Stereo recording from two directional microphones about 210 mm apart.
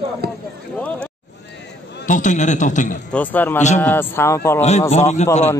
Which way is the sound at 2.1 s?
35° left (ahead or behind).